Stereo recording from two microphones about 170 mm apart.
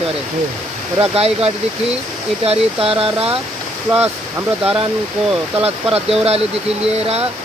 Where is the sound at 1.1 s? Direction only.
35° right (ahead or behind).